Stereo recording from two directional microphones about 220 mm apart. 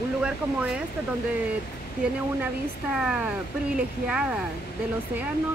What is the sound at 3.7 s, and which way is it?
Speech, 5° right (ahead or behind).